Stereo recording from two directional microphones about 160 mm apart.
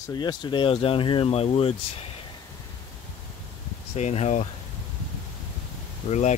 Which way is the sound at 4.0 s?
45° left (ahead or behind).